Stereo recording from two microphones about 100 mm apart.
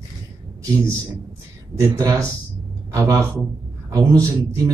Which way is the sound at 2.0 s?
35° right (ahead or behind).